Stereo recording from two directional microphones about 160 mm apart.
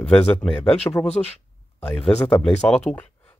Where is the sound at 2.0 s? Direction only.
40° left (ahead or behind).